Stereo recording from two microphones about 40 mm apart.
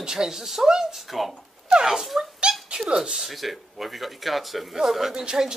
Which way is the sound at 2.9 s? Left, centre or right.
Right.